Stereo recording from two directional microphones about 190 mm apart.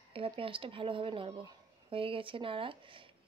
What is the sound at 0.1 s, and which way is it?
Speech, 30° right (ahead or behind).